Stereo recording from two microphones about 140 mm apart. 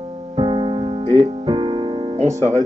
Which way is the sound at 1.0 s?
50° right (ahead or behind).